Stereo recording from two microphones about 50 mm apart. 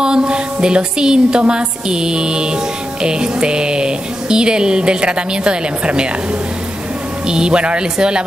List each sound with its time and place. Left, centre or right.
0.0 s music: centre
7.2 s music: centre